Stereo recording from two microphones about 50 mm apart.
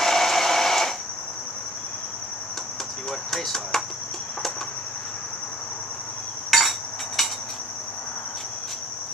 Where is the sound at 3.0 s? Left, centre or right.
Centre.